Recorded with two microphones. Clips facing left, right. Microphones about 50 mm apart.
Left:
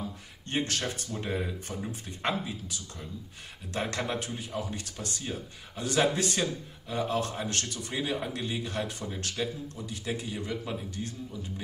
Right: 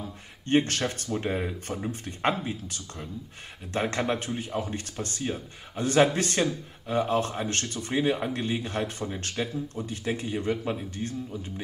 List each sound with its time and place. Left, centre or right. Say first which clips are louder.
0.5 s speech: right 7 dB; right
1.1 s speech: right 3 dB; right
3.7 s speech: right 4 dB; right